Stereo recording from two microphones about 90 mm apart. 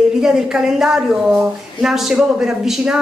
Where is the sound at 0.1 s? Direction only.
5° right (ahead or behind).